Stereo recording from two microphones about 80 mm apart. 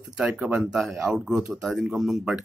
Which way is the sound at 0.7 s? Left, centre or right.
Centre.